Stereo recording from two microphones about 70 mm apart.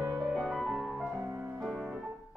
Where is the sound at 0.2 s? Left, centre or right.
Centre.